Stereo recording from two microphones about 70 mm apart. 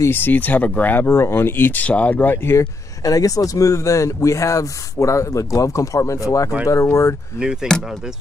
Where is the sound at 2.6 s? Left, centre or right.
Left.